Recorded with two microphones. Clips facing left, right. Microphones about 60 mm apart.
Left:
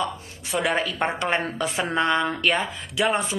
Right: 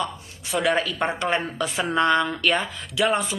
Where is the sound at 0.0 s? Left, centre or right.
Left.